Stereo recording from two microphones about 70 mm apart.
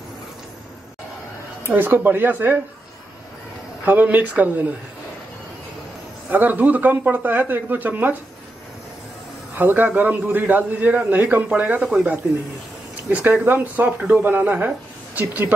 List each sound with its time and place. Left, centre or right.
1.6 s speech: right
3.8 s speech: right
6.2 s speech: right
9.6 s speech: right
13.4 s speech: right